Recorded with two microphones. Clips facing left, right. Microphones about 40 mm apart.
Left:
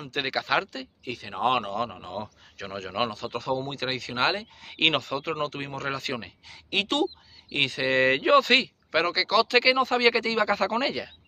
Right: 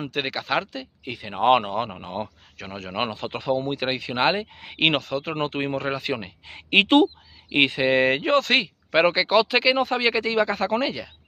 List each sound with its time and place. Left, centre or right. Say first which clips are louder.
0.1 s speech: left 1 dB; centre
1.0 s speech: right 6 dB; right
2.5 s speech: left 2 dB; centre
3.0 s speech: right 2 dB; right
4.7 s speech: right 2 dB; centre
5.3 s speech: right 7 dB; right
5.9 s speech: right 4 dB; centre
6.4 s speech: right 10 dB; right; by 8.5 s centre
8.9 s speech: right 4 dB; right
9.8 s speech: even; centre